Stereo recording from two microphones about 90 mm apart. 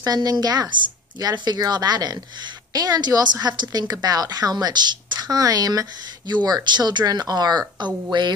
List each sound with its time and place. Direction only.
0.0 s a woman's voice: 45° right (ahead or behind)